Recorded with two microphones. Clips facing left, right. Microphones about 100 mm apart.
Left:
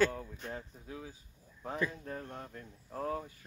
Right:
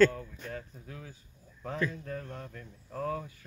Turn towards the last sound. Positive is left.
turn(degrees=20)  # may be behind; listen again after turning